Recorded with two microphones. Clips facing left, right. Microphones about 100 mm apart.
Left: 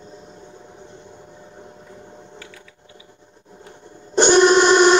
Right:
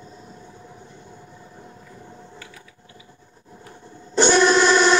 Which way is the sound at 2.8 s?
20° left (ahead or behind).